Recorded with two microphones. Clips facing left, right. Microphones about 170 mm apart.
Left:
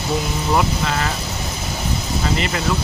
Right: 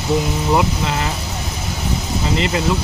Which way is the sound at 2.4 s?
20° right (ahead or behind).